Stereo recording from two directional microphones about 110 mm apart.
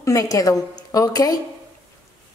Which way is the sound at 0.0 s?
30° left (ahead or behind).